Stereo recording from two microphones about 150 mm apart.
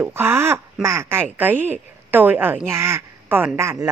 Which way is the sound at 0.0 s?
15° right (ahead or behind).